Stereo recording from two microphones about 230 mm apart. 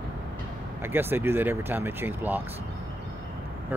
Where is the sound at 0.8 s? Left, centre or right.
Centre.